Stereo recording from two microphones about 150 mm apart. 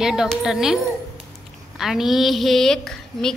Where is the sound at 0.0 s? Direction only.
5° right (ahead or behind).